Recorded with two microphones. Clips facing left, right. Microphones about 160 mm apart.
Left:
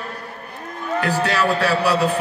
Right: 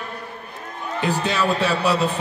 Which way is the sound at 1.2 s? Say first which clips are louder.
Left 1 dB; 20° right (ahead or behind).